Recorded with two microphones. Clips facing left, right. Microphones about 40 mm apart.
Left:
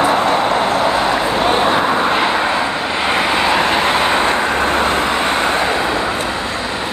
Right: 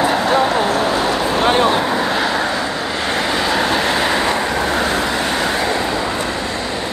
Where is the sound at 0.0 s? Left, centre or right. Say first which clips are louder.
Left 1 dB; left.